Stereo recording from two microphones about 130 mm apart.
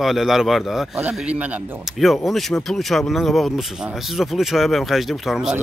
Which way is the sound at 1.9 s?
Centre (ahead or behind).